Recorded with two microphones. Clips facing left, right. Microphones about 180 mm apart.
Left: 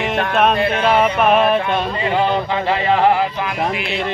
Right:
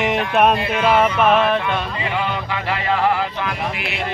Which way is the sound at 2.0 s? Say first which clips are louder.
Left 6 dB; 30° left (ahead or behind).